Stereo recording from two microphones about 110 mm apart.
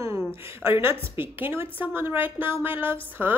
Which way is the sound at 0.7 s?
20° right (ahead or behind).